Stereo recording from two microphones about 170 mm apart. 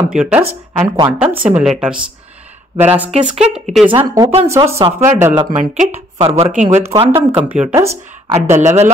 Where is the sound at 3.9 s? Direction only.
30° right (ahead or behind).